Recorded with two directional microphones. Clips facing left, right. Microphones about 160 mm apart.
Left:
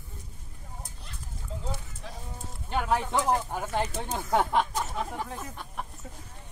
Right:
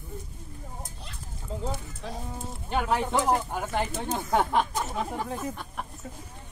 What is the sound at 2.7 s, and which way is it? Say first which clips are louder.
Speech: right 1 dB; 15° right (ahead or behind).